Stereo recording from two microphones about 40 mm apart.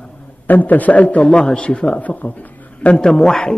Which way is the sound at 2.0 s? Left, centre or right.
Left.